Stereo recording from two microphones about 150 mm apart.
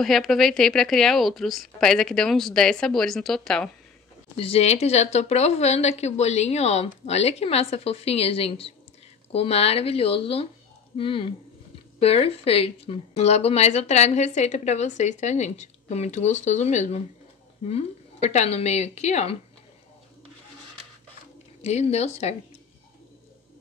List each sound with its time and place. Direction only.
0.0 s a woman's voice: centre (ahead or behind)
4.4 s speech: 40° left (ahead or behind)
21.6 s speech: 45° left (ahead or behind)